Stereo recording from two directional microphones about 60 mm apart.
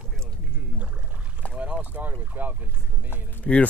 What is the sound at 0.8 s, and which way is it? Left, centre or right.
Rowboat, right.